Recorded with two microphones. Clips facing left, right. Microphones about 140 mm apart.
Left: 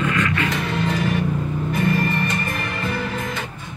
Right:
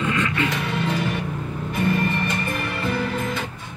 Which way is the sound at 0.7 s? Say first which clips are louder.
Left 2 dB; 5° right (ahead or behind).